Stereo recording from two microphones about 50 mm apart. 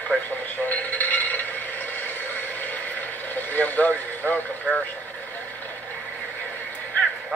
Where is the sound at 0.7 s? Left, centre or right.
Left.